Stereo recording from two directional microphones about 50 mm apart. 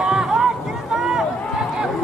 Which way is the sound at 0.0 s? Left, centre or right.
Centre.